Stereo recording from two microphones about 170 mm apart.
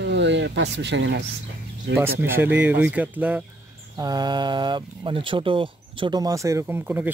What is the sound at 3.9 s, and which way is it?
Speech, 25° right (ahead or behind).